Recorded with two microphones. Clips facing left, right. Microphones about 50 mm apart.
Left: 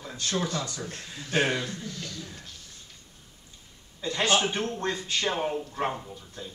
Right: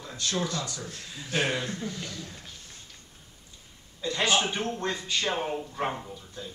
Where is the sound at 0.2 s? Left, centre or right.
Left.